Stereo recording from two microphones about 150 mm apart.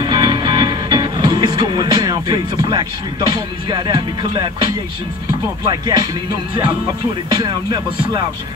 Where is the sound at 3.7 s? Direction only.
30° right (ahead or behind).